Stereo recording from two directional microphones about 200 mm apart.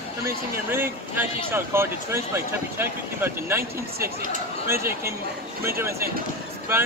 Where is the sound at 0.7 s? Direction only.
10° right (ahead or behind).